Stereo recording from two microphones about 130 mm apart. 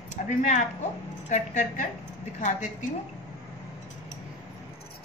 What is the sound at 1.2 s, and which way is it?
A woman's voice, 70° left (ahead or behind).